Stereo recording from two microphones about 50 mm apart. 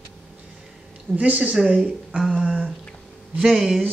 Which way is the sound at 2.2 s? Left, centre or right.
Centre.